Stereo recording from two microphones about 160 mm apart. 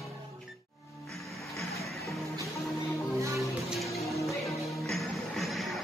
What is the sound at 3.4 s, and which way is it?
Music, centre (ahead or behind).